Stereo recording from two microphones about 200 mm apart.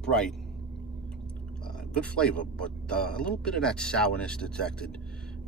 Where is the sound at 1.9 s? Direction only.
5° left (ahead or behind).